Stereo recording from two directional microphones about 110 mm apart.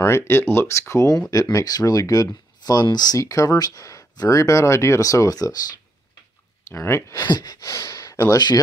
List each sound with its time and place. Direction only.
0.0 s speech: 25° left (ahead or behind)
6.7 s speech: 25° left (ahead or behind)
7.2 s speech: 40° left (ahead or behind)